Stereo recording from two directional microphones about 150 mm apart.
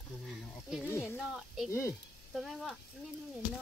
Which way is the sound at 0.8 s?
15° left (ahead or behind).